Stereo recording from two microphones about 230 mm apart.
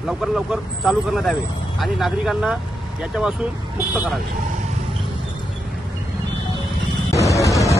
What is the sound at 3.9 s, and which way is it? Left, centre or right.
Speech, centre.